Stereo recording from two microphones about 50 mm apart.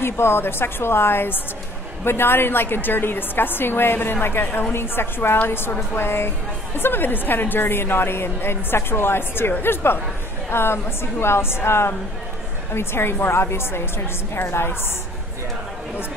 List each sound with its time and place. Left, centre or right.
0.0 s a woman's voice: left